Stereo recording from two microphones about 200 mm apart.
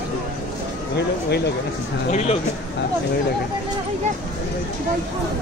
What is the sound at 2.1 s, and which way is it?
Speech, 35° left (ahead or behind).